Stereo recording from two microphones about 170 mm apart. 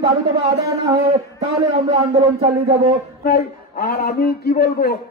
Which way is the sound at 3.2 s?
65° left (ahead or behind).